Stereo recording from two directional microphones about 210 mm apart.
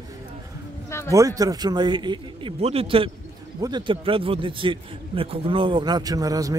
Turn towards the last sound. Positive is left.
turn(degrees=-15)  # may be behind; listen again after turning